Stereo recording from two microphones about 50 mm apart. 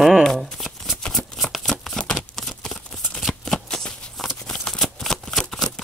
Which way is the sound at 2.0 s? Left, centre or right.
Centre.